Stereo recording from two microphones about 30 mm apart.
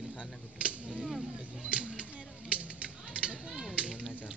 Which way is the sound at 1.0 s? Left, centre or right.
Centre.